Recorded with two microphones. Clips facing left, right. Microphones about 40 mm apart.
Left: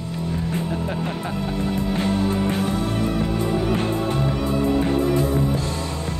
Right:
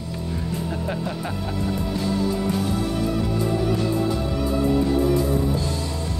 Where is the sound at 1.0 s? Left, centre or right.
Left.